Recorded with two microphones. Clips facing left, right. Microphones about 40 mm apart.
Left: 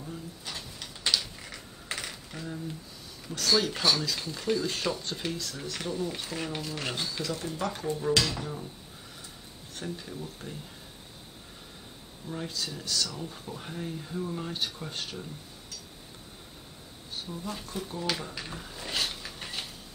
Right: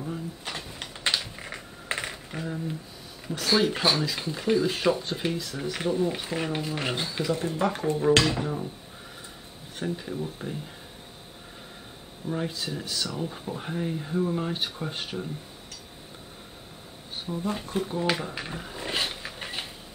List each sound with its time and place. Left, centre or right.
0.0 s typing: right
3.3 s speech: centre
9.8 s speech: centre
12.3 s speech: right
17.1 s speech: right